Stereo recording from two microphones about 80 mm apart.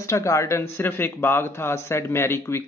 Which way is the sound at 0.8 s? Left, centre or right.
Left.